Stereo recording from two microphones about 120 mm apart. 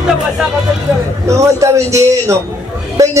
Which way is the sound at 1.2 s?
25° right (ahead or behind).